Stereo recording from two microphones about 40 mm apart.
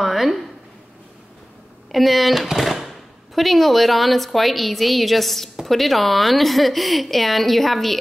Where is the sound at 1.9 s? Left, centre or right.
Centre.